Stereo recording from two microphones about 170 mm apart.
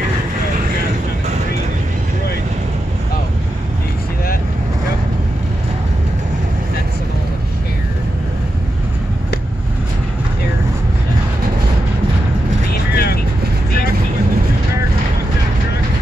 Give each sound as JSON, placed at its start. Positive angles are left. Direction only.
{"t": 12.9, "sound": "vehicle", "side_deg": 65}